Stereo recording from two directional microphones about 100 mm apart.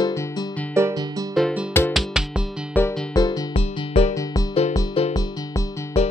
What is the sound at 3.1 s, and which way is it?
Music, 40° left (ahead or behind).